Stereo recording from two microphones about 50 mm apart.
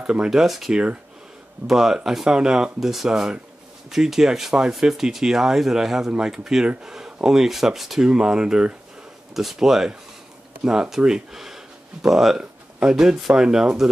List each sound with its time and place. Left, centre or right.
0.0 s speech: centre
8.0 s speech: centre
9.3 s speech: centre